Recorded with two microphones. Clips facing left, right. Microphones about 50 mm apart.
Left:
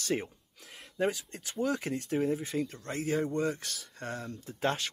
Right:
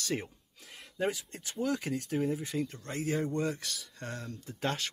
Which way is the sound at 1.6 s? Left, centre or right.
Left.